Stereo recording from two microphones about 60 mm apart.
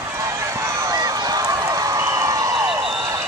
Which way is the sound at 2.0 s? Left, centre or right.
Right.